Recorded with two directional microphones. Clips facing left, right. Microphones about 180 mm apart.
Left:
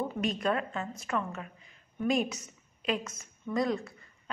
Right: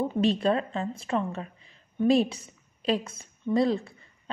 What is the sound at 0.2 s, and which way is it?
A woman's voice, 30° right (ahead or behind).